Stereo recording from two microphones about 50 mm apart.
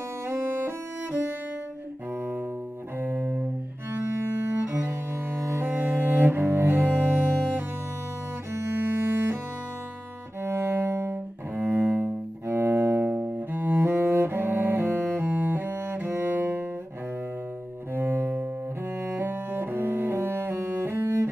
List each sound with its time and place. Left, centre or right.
0.3 s music: right
3.0 s double bass: right
5.4 s music: right
5.7 s cello: right
8.7 s double bass: right
10.4 s cello: right
13.1 s cello: right
13.7 s cello: right
17.9 s double bass: right
19.1 s cello: right